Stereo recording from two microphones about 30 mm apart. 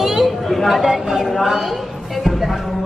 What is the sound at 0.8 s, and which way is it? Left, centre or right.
Speech, right.